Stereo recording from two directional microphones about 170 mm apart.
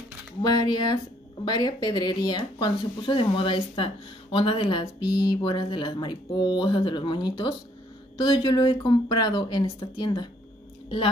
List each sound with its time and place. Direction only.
0.4 s speech: 25° left (ahead or behind)